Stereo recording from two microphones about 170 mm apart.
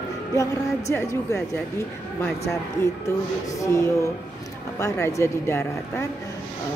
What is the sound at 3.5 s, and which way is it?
Speech, 15° left (ahead or behind).